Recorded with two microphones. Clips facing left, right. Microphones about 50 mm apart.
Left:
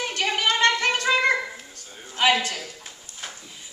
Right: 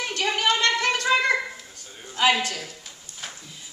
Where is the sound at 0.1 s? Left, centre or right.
Left.